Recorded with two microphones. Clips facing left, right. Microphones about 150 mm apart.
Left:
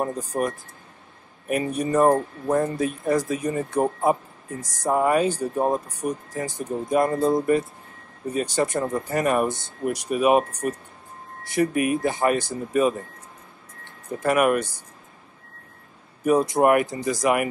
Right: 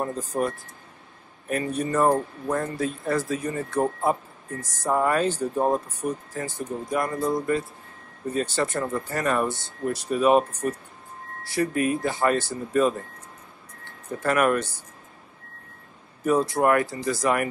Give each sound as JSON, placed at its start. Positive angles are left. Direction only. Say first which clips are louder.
{"t": 0.0, "sound": "speech", "louder": "left 1 dB", "side_deg": 10}
{"t": 14.2, "sound": "speech", "louder": "left 2 dB", "side_deg": 10}
{"t": 16.3, "sound": "speech", "louder": "left 3 dB", "side_deg": 15}